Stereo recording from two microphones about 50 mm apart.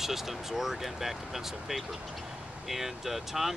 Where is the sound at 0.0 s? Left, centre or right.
Centre.